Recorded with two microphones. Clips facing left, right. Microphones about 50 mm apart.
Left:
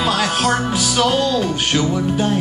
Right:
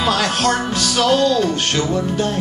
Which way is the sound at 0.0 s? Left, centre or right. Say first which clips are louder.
Even; centre.